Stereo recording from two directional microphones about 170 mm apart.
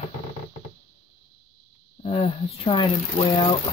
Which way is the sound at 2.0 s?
35° left (ahead or behind).